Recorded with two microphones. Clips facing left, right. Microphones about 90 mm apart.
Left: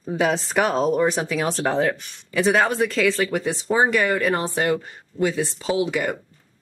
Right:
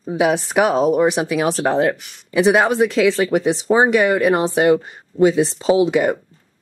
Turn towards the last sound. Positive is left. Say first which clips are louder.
# right 7 dB
turn(degrees=-25)  # may be behind; listen again after turning